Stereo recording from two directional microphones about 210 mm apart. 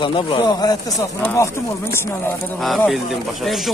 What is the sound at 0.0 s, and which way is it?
Speech, 25° left (ahead or behind).